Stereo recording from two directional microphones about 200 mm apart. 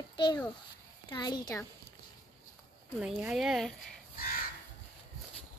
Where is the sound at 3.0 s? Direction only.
5° right (ahead or behind).